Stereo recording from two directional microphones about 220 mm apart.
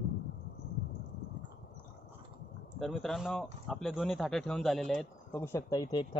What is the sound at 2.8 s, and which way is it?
Speech, centre (ahead or behind).